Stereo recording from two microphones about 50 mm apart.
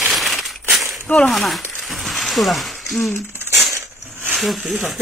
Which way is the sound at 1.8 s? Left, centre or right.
Centre.